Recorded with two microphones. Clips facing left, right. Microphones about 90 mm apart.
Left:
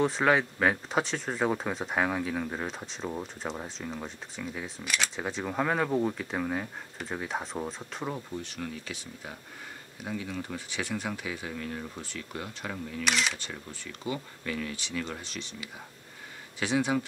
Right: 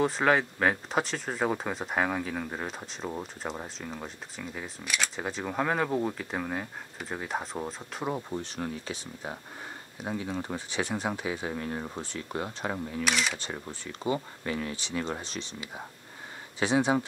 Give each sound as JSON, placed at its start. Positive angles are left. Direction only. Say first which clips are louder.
{"t": 0.0, "sound": "speech", "louder": "even", "side_deg": 0}
{"t": 8.3, "sound": "speech", "louder": "right 3 dB", "side_deg": -35}
{"t": 13.0, "sound": "speech", "louder": "even", "side_deg": 0}
{"t": 13.4, "sound": "speech", "louder": "right 3 dB", "side_deg": -30}